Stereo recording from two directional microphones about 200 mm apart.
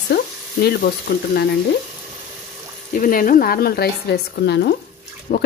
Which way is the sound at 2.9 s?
45° left (ahead or behind).